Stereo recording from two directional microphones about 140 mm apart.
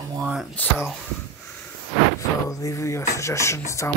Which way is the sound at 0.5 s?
10° left (ahead or behind).